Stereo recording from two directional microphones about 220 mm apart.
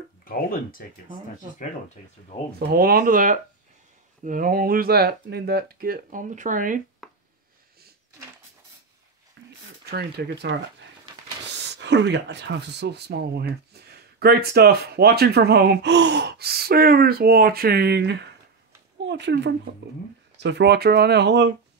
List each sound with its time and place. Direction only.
0.2 s speech: 40° left (ahead or behind)
2.7 s speech: 40° right (ahead or behind)
9.4 s a sound: 55° right (ahead or behind)
9.8 s speech: 45° right (ahead or behind)